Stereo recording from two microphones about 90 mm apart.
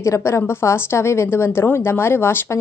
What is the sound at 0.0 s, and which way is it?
A woman's voice, 35° left (ahead or behind).